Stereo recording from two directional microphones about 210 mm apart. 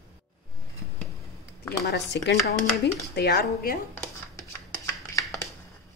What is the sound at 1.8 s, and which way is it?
Speech, 55° left (ahead or behind).